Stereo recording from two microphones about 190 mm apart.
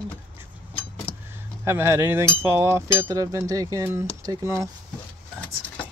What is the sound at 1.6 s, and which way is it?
Speech, 15° right (ahead or behind).